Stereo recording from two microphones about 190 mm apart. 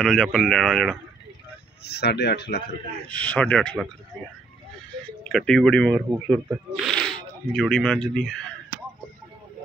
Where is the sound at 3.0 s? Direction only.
5° left (ahead or behind).